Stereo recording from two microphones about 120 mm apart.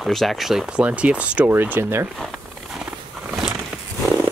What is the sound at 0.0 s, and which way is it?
Speech, centre (ahead or behind).